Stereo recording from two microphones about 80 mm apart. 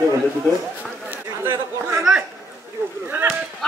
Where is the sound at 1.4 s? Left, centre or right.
Right.